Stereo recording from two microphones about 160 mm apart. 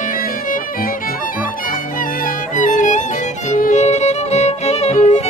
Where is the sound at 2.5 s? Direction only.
50° left (ahead or behind).